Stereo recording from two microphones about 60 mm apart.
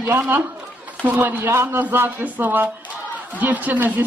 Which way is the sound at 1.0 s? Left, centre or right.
Right.